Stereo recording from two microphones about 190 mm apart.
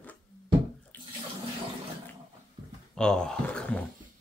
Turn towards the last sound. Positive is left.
turn(degrees=5)  # may be behind; listen again after turning